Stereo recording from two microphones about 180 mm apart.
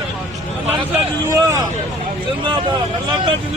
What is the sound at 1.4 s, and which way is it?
Hubbub, 20° right (ahead or behind).